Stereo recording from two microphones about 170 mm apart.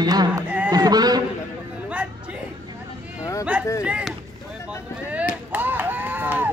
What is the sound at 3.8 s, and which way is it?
Speech, 5° right (ahead or behind).